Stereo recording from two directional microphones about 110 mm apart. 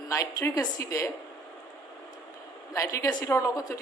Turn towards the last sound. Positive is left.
turn(degrees=30)  # may be behind; listen again after turning